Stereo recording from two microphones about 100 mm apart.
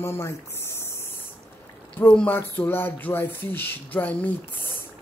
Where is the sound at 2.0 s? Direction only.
20° left (ahead or behind).